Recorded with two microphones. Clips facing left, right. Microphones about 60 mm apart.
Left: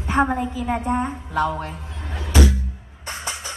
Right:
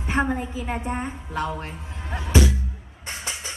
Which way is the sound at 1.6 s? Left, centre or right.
Right.